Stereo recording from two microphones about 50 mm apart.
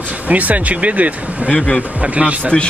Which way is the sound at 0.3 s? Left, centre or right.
Right.